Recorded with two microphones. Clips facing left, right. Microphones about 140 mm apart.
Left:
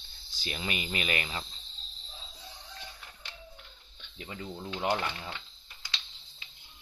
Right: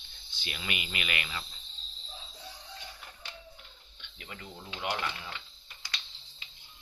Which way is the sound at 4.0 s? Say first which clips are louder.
Left 4 dB; 35° left (ahead or behind).